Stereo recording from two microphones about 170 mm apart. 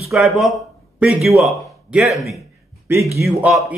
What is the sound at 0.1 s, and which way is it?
A man's voice, centre (ahead or behind).